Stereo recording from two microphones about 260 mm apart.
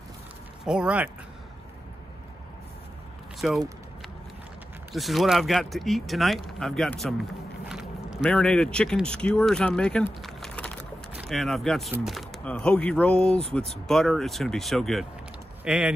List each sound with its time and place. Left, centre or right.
0.7 s speech: centre
3.3 s speech: centre
4.9 s speech: centre